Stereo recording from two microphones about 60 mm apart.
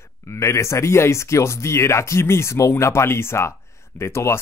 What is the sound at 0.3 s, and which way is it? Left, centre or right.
Speech, left.